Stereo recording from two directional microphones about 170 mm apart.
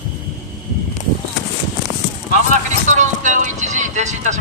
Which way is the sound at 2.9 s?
45° right (ahead or behind).